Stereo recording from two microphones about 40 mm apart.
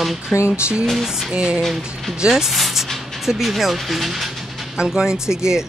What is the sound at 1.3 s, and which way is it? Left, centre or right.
Speech, right.